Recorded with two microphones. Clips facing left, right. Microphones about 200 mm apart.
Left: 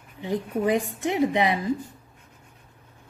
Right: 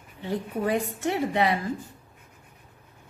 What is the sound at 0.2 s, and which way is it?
A woman's voice, 15° left (ahead or behind).